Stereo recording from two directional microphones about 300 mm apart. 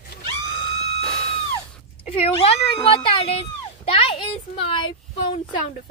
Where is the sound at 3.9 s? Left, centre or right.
Centre.